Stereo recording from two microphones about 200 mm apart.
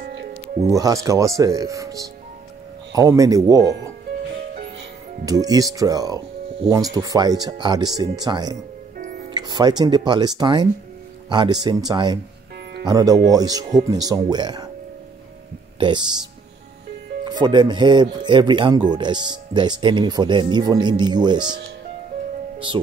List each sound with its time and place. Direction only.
0.0 s music: 55° right (ahead or behind)
0.7 s speech: 15° right (ahead or behind)
5.2 s speech: 20° right (ahead or behind)
15.8 s speech: 20° right (ahead or behind)